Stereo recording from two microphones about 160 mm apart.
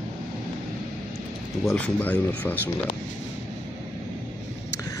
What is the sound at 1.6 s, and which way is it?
Speech, 5° left (ahead or behind).